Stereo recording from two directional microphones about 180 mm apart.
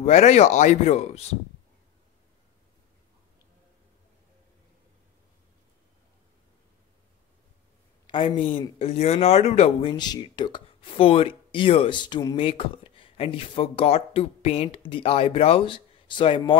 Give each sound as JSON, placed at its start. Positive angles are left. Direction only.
{"t": 0.0, "sound": "speech", "side_deg": 40}
{"t": 8.1, "sound": "speech", "side_deg": 30}